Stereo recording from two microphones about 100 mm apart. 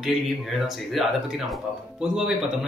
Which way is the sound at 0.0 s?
Centre (ahead or behind).